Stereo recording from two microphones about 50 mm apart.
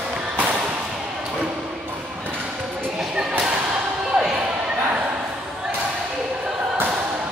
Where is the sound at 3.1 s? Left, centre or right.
Centre.